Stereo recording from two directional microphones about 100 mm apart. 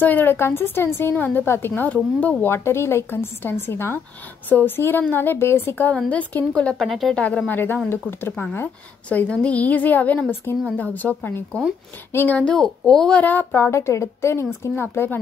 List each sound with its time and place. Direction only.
0.0 s a woman's voice: 20° left (ahead or behind)
13.2 s a woman's voice: 20° left (ahead or behind)